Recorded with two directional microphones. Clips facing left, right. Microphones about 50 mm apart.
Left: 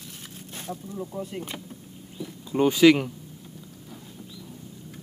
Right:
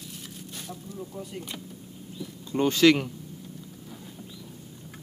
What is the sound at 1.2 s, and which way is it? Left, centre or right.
Speech, left.